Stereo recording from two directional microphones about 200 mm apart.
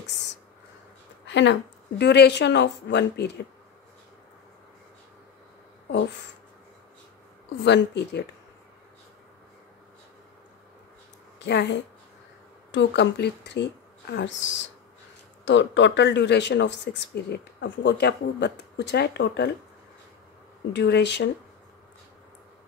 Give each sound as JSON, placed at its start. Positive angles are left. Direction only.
{"t": 1.2, "sound": "speech", "side_deg": 65}
{"t": 7.6, "sound": "speech", "side_deg": 60}
{"t": 11.3, "sound": "a woman's voice", "side_deg": 55}
{"t": 20.7, "sound": "speech", "side_deg": 60}